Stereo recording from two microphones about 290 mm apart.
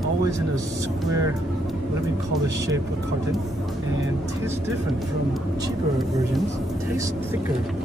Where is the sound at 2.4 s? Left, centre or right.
Centre.